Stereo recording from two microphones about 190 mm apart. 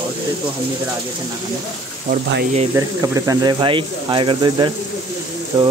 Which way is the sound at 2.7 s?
15° right (ahead or behind).